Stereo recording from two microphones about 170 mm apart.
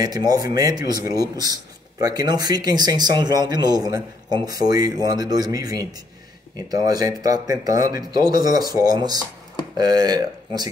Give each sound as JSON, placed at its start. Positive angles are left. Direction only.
{"t": 0.0, "sound": "speech", "side_deg": -20}